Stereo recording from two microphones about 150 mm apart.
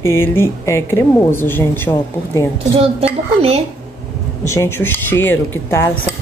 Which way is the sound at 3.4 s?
45° right (ahead or behind).